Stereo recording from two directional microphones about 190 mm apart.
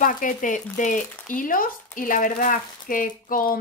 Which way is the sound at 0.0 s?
45° left (ahead or behind).